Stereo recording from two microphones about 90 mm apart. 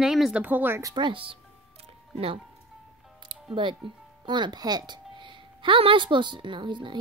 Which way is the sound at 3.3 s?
60° right (ahead or behind).